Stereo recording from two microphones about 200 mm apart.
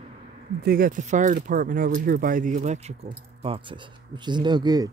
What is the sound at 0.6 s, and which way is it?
Speech, 45° right (ahead or behind).